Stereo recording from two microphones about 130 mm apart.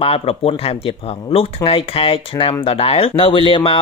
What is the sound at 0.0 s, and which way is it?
Speech, 50° left (ahead or behind).